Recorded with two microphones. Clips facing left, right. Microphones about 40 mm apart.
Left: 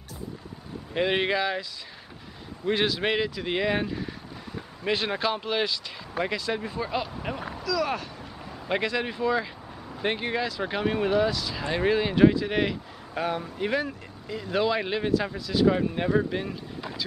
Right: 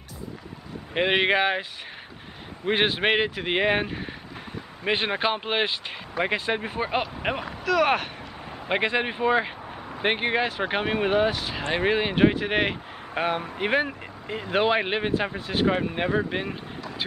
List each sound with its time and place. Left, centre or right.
0.9 s speech: right
8.6 s speech: right